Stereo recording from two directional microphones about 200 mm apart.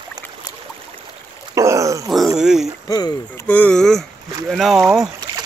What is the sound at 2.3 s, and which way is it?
Speech, centre (ahead or behind).